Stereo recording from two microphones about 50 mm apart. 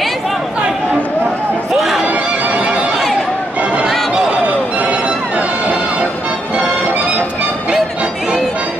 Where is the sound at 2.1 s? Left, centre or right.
Right.